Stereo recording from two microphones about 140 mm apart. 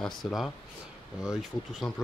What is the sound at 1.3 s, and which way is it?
Speech, centre (ahead or behind).